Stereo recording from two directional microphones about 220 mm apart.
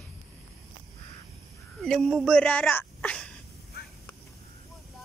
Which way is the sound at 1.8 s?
Centre (ahead or behind).